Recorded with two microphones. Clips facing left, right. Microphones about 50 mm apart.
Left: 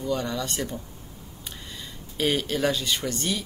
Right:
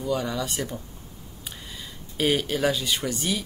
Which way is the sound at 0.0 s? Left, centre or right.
Centre.